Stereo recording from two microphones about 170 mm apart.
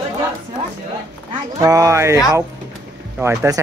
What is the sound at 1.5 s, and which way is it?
Speech, 20° right (ahead or behind).